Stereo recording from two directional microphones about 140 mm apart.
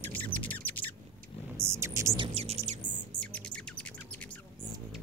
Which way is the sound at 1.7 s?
20° right (ahead or behind).